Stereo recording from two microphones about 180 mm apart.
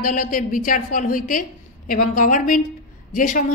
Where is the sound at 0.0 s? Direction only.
50° left (ahead or behind).